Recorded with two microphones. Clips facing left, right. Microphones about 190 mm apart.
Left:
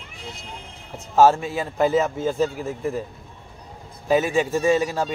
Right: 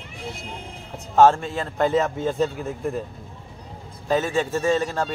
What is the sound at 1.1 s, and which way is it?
A man's voice, 5° left (ahead or behind).